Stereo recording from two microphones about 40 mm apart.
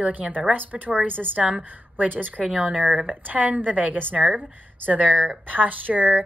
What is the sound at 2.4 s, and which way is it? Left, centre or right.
Speech, right.